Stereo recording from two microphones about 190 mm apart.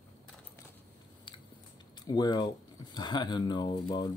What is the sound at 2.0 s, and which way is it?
Speech, 20° left (ahead or behind).